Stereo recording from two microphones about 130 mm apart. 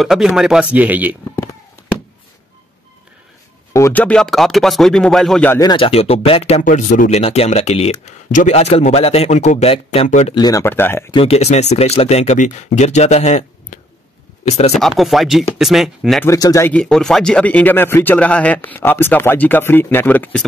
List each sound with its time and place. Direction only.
0.0 s speech: centre (ahead or behind)
3.9 s speech: 10° left (ahead or behind)
5.6 s speech: 30° left (ahead or behind)
5.9 s speech: 50° left (ahead or behind)
6.6 s speech: 85° left; by 8.1 s 50° left (ahead or behind)
8.3 s speech: 70° left (ahead or behind); by 10.0 s 50° left (ahead or behind)
10.0 s speech: 65° left (ahead or behind)
10.3 s speech: 30° left (ahead or behind)
10.6 s speech: 15° left (ahead or behind)
11.1 s speech: 45° left (ahead or behind)
14.8 s speech: centre (ahead or behind)
16.3 s speech: 25° left (ahead or behind)
16.6 s speech: 5° left (ahead or behind)